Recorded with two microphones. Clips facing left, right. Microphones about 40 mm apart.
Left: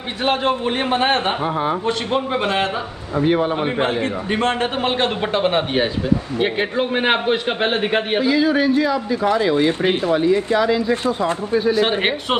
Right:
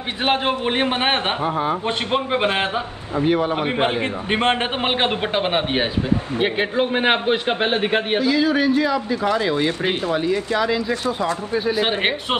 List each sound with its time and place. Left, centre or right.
0.2 s a man's voice: right
1.4 s speech: centre
2.1 s a man's voice: right
3.3 s a man's voice: centre
3.5 s speech: centre
3.8 s a man's voice: right; by 9.0 s centre
9.6 s speech: left
11.5 s a man's voice: centre